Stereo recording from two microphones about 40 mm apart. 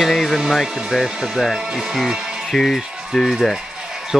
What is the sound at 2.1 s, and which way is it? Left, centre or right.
Music, centre.